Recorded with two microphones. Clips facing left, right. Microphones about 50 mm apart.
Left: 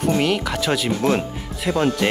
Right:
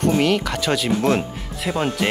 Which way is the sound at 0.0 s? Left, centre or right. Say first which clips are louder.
Right 1 dB; centre.